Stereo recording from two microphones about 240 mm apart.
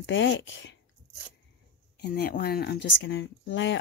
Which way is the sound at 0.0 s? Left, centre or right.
Left.